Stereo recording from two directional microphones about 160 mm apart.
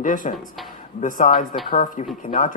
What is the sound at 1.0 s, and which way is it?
Speech, 60° left (ahead or behind).